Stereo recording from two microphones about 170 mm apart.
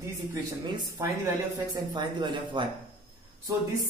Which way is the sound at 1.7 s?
25° right (ahead or behind).